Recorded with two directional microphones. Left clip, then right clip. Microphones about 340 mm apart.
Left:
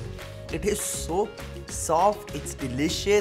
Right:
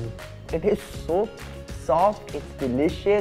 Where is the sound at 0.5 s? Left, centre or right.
Right.